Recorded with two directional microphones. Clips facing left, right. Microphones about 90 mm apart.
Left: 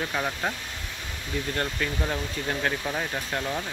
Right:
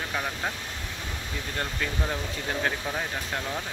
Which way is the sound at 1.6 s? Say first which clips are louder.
Right 1 dB; 5° right (ahead or behind).